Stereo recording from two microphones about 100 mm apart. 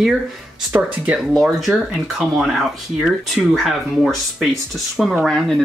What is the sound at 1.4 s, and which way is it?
Speech, centre (ahead or behind).